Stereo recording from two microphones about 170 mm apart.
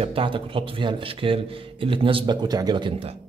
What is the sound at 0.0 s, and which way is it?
Speech, 30° right (ahead or behind).